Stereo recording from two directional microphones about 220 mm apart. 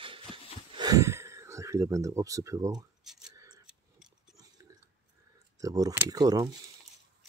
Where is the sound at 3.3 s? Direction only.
15° right (ahead or behind).